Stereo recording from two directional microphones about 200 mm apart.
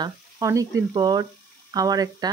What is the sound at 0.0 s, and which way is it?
Speech, 15° right (ahead or behind).